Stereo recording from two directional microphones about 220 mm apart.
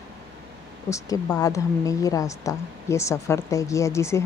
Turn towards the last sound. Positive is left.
turn(degrees=10)  # may be behind; listen again after turning